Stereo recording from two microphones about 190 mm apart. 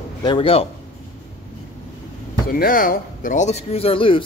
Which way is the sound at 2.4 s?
50° left (ahead or behind).